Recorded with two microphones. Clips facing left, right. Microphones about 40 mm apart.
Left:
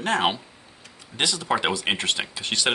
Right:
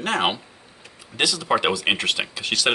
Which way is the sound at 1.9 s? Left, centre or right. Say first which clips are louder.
Right 2 dB; right.